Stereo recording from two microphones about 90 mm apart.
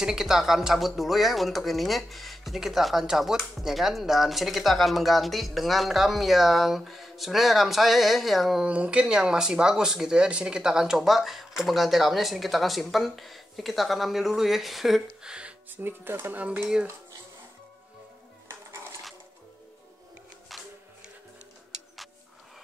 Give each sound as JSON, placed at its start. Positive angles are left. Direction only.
{"t": 0.0, "sound": "speech", "side_deg": -5}
{"t": 8.6, "sound": "speech", "side_deg": -15}
{"t": 15.7, "sound": "speech", "side_deg": -25}
{"t": 18.5, "sound": "dishes", "side_deg": -30}